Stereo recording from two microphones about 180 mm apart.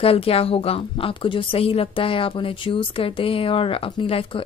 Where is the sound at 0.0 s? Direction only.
30° left (ahead or behind).